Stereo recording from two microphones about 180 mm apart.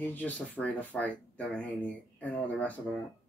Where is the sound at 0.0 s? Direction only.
10° left (ahead or behind).